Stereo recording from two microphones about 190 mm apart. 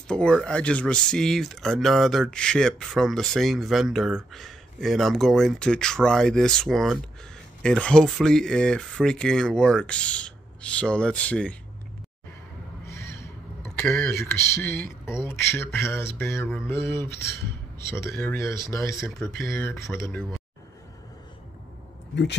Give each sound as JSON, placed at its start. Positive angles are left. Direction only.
{"t": 0.1, "sound": "speech", "side_deg": 5}
{"t": 12.8, "sound": "crow", "side_deg": 15}
{"t": 13.9, "sound": "speech", "side_deg": 15}